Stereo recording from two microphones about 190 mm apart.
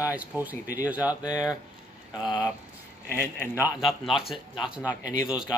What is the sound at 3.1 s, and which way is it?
Speech, 10° left (ahead or behind).